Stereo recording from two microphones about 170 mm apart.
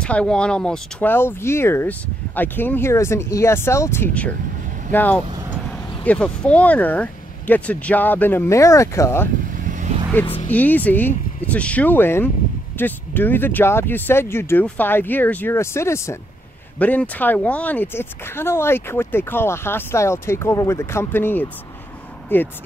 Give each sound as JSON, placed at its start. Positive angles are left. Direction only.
{"t": 0.0, "sound": "speech", "side_deg": 5}
{"t": 9.5, "sound": "vehicle", "side_deg": -50}
{"t": 10.5, "sound": "speech", "side_deg": 10}